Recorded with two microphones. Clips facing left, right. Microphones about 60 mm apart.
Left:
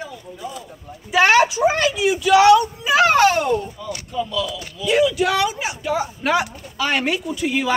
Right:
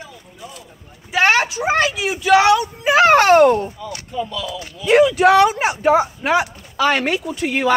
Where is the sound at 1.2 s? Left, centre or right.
Right.